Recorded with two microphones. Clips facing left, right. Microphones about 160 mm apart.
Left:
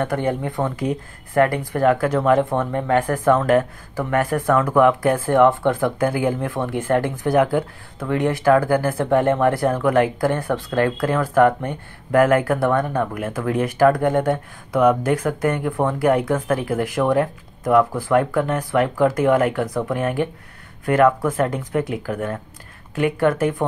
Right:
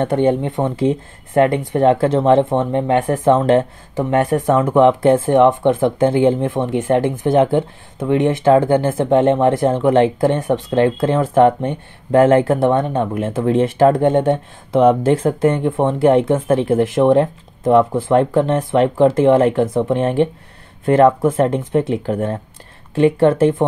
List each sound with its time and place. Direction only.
0.0 s speech: 25° right (ahead or behind)